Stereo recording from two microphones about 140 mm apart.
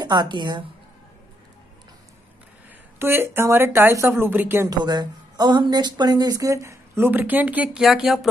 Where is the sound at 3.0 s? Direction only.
15° right (ahead or behind).